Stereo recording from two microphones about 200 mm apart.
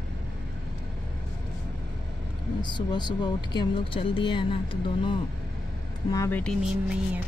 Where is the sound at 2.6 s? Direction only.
20° left (ahead or behind).